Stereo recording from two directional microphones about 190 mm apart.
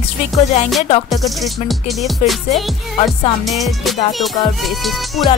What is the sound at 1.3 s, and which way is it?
Music, centre (ahead or behind).